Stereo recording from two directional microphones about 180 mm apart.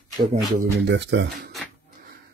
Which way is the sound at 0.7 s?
75° right (ahead or behind).